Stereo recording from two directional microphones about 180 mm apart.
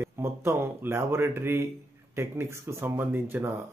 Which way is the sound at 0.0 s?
15° right (ahead or behind).